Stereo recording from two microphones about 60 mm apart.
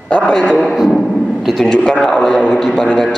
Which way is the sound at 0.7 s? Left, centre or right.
Centre.